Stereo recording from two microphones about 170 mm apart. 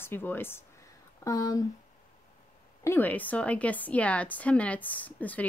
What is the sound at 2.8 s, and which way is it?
Speech, 10° left (ahead or behind).